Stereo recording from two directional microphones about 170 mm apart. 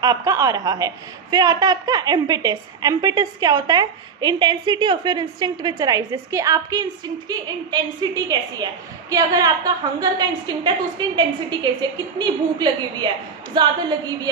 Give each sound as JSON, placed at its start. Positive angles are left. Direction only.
{"t": 0.0, "sound": "a woman's voice", "side_deg": -20}